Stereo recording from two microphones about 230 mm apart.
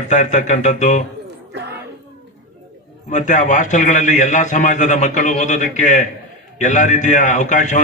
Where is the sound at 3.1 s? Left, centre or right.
Left.